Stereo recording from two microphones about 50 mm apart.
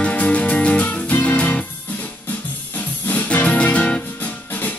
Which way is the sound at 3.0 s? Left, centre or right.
Left.